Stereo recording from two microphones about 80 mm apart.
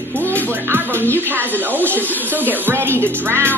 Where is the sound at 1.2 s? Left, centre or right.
Right.